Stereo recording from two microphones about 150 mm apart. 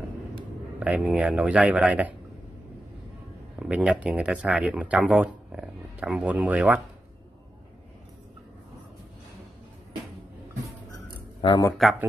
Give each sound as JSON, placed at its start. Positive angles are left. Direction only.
{"t": 0.7, "sound": "speech", "side_deg": -10}
{"t": 3.5, "sound": "speech", "side_deg": -5}
{"t": 11.4, "sound": "speech", "side_deg": 25}